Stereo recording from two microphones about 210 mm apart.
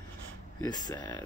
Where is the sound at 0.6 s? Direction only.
20° left (ahead or behind).